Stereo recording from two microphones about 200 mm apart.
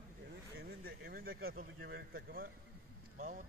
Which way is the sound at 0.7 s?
50° right (ahead or behind).